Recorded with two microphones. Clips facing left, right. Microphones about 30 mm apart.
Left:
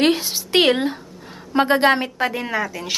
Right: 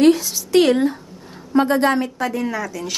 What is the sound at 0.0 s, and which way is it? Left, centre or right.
A woman's voice, left.